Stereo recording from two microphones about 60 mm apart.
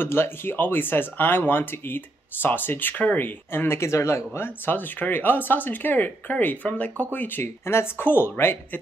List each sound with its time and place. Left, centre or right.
0.0 s speech: left
4.6 s speech: left
7.4 s speech: left